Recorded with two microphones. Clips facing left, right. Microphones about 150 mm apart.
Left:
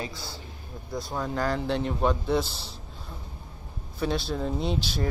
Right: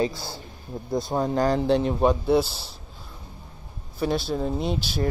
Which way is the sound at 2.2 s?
10° right (ahead or behind).